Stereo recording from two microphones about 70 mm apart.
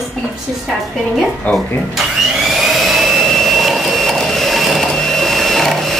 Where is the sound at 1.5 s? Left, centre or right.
Left.